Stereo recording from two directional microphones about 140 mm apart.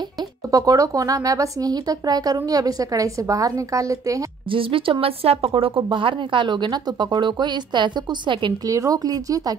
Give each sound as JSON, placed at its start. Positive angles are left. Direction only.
{"t": 0.2, "sound": "speech", "side_deg": -25}
{"t": 4.5, "sound": "speech", "side_deg": -40}
{"t": 8.6, "sound": "speech", "side_deg": -25}